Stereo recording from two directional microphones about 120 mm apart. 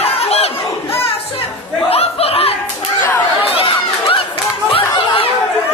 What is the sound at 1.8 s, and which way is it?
Chuckle, 55° left (ahead or behind).